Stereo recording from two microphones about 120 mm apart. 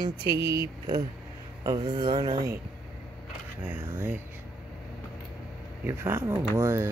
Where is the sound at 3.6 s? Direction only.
15° right (ahead or behind).